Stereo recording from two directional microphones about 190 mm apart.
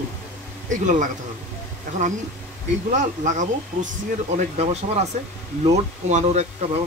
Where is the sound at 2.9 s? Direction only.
40° right (ahead or behind).